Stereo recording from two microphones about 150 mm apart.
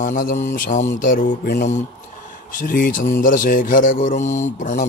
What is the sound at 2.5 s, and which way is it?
Mantra, 65° left (ahead or behind).